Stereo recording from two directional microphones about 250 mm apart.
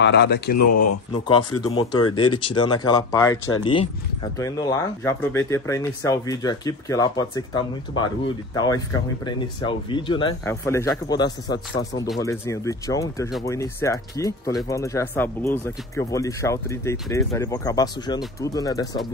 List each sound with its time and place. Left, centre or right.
0.0 s speech: left
0.7 s speech: left
1.1 s speech: centre
2.0 s speech: left
2.3 s speech: centre